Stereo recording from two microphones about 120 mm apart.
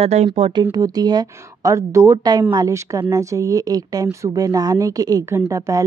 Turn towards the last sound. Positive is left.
turn(degrees=-25)  # may be behind; listen again after turning